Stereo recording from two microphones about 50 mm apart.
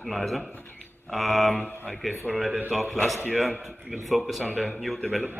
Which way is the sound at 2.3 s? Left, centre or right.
Left.